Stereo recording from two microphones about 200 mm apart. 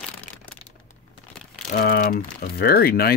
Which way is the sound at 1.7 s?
45° left (ahead or behind).